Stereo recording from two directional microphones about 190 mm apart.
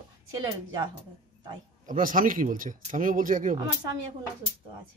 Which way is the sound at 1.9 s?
45° right (ahead or behind).